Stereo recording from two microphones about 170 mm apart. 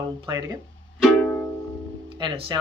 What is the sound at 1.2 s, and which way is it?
Music, 10° left (ahead or behind).